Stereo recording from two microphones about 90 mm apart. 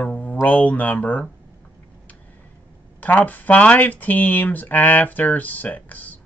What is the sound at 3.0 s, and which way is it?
Speech, 20° left (ahead or behind).